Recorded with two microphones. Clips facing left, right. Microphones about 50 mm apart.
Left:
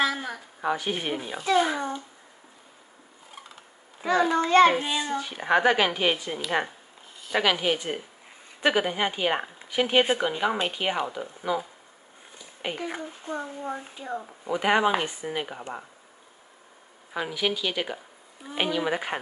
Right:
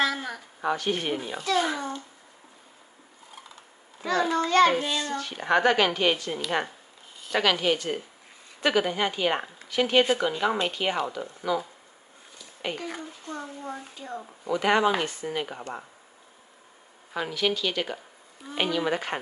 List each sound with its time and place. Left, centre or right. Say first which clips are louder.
0.0 s a child's voice: even; centre
4.0 s a child's voice: left 2 dB; centre
12.6 s speech: left 1 dB; centre
17.1 s speech: right 1 dB; centre